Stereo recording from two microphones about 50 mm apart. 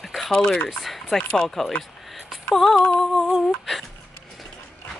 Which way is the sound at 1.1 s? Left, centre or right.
Centre.